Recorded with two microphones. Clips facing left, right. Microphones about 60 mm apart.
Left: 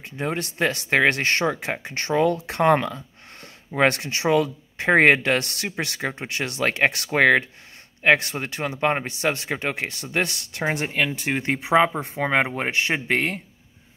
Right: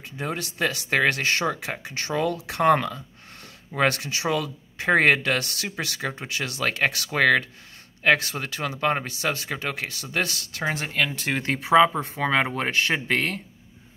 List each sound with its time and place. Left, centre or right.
0.0 s speech: left
11.1 s speech: centre